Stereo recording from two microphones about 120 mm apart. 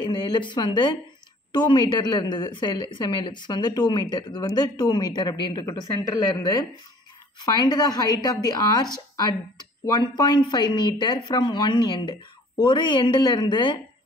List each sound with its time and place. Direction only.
0.0 s speech: 40° left (ahead or behind)